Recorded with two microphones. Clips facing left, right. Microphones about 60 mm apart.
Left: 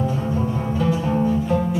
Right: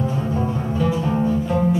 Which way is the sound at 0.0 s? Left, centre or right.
Centre.